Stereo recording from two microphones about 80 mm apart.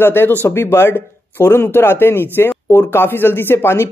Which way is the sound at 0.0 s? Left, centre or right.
Left.